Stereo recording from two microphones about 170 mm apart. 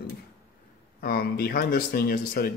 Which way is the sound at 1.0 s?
65° left (ahead or behind).